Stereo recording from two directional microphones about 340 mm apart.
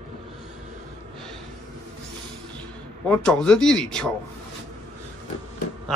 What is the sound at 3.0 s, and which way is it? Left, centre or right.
Speech, centre.